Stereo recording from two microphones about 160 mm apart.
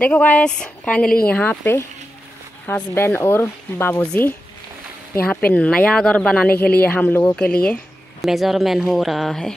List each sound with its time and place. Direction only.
0.0 s speech: 10° left (ahead or behind)
5.5 s speech: 5° left (ahead or behind)
6.5 s speech: 75° left (ahead or behind)
6.8 s speech: 10° left (ahead or behind)